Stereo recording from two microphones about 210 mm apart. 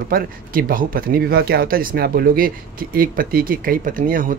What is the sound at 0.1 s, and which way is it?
Speech, 45° right (ahead or behind).